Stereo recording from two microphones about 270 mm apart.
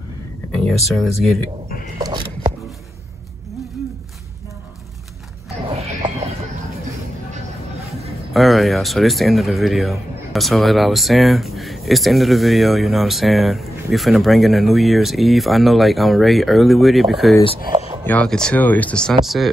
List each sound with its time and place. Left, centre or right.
0.7 s speech: centre
2.0 s a sound: centre
5.7 s music: right
8.3 s speech: centre